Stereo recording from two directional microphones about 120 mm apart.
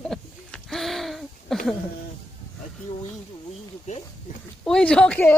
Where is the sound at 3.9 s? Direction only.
70° left (ahead or behind).